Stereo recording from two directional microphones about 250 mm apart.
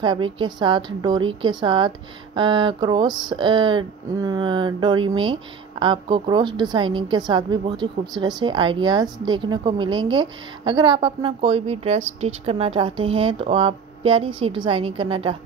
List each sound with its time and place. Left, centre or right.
0.0 s a woman's voice: centre